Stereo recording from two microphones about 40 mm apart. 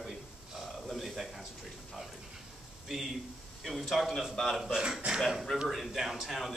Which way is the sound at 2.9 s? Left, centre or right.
Centre.